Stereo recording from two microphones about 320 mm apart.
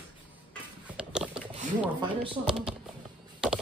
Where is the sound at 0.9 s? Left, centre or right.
Centre.